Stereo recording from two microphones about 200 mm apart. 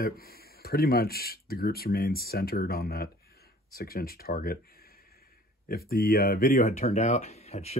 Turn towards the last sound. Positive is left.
turn(degrees=30)  # may be behind; listen again after turning